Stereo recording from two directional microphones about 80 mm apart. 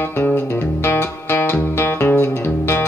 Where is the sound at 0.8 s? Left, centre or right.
Left.